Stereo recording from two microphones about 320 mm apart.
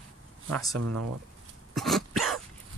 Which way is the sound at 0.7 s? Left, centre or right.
Right.